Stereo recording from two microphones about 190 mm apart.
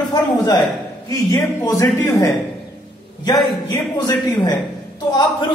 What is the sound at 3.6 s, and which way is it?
A man's voice, 20° left (ahead or behind).